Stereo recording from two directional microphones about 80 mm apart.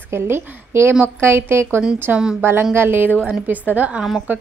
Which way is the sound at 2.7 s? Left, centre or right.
Right.